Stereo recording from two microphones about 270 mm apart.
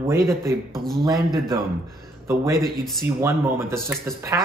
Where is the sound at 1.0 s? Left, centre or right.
Centre.